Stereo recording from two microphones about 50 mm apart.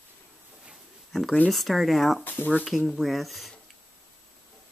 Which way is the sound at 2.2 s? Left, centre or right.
Left.